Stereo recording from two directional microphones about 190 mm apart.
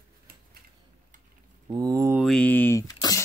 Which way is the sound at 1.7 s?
20° right (ahead or behind).